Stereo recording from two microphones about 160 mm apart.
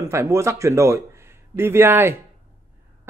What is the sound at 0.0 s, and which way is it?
A man's voice, 15° right (ahead or behind).